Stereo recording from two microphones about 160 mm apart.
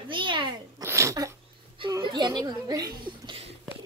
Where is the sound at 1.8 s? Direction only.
30° right (ahead or behind).